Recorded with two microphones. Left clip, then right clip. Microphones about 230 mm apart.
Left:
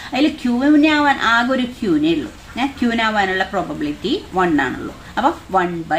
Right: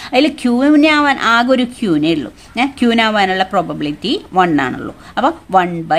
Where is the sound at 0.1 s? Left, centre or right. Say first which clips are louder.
Right 5 dB; right.